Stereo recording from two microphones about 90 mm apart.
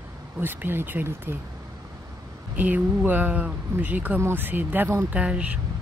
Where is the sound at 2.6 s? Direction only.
20° right (ahead or behind).